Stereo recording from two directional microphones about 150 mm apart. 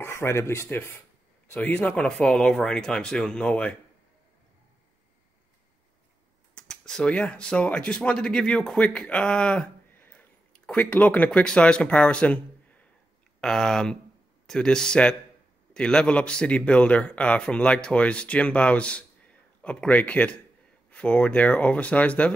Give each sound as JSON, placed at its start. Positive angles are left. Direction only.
{"t": 0.0, "sound": "speech", "side_deg": 15}
{"t": 6.5, "sound": "speech", "side_deg": 5}